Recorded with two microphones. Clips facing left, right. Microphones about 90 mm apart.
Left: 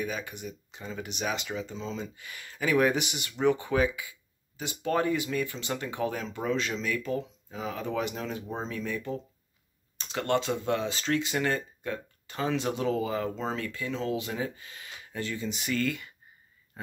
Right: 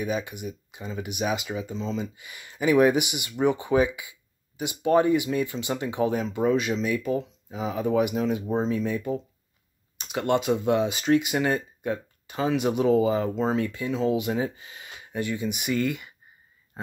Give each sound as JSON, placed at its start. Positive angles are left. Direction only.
{"t": 0.0, "sound": "speech", "side_deg": -15}
{"t": 2.1, "sound": "speech", "side_deg": -10}
{"t": 16.8, "sound": "a sound", "side_deg": -25}